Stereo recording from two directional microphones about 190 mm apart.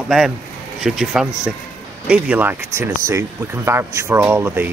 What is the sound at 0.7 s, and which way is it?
Speech, centre (ahead or behind).